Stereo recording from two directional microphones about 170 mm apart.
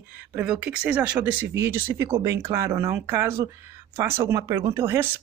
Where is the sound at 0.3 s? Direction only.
10° right (ahead or behind).